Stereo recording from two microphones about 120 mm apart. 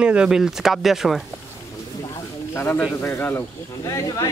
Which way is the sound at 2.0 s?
30° left (ahead or behind).